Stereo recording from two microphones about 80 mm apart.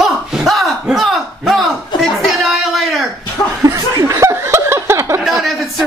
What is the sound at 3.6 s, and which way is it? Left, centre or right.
Chuckle, right.